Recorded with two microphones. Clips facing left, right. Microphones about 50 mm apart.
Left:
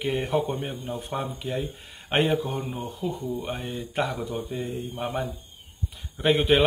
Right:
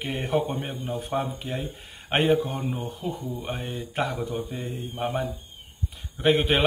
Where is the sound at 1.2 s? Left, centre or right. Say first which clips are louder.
Left 1 dB; right.